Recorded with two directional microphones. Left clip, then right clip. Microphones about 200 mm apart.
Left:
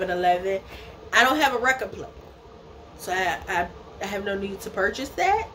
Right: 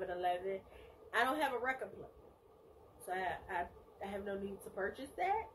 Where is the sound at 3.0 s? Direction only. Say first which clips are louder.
Left 15 dB; 5° left (ahead or behind).